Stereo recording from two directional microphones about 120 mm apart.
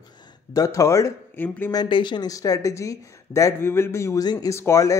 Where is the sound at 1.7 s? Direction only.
40° left (ahead or behind); by 4.2 s 20° left (ahead or behind).